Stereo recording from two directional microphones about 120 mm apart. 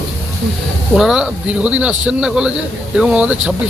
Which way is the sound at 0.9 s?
5° right (ahead or behind).